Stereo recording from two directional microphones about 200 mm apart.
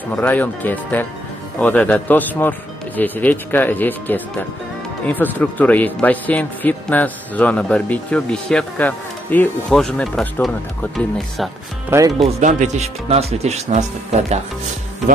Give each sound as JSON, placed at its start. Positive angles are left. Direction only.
{"t": 0.1, "sound": "a man's voice", "side_deg": 10}
{"t": 11.9, "sound": "speech", "side_deg": -15}
{"t": 12.3, "sound": "speech", "side_deg": -35}